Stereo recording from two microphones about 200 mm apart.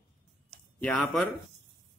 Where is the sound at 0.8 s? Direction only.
5° left (ahead or behind).